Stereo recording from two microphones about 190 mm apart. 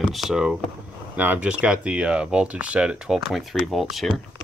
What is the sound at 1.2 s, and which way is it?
Speech, 5° right (ahead or behind).